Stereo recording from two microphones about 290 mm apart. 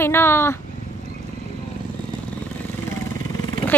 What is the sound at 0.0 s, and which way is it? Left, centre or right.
Speech, centre.